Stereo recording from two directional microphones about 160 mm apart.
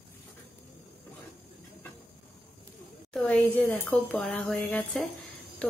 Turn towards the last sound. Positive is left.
turn(degrees=10)  # may be behind; listen again after turning